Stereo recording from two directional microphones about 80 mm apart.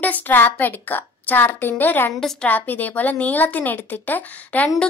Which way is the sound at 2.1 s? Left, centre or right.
Centre.